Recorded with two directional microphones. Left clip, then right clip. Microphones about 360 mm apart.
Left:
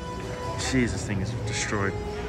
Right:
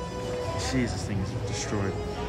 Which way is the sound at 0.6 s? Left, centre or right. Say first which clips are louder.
Left 7 dB; centre.